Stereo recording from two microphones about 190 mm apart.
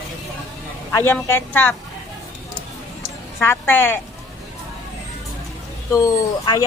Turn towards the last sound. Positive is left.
turn(degrees=20)  # may be behind; listen again after turning